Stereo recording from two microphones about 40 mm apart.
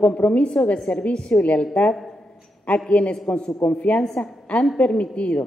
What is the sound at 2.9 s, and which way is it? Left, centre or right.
Speech, left.